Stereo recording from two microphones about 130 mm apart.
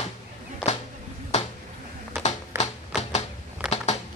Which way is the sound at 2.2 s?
60° left (ahead or behind).